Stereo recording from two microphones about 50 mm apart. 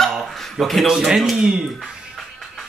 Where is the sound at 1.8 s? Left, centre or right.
Centre.